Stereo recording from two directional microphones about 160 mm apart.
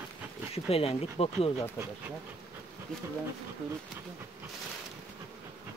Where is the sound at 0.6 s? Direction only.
40° left (ahead or behind).